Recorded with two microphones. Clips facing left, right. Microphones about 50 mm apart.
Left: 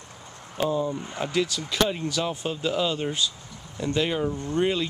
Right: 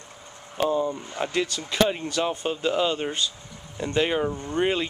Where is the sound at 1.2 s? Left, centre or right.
Centre.